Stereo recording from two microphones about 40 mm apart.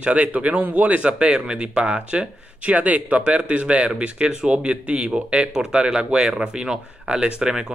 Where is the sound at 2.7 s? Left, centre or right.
Right.